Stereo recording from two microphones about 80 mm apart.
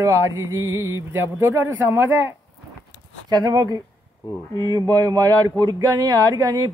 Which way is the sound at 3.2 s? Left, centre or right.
Right.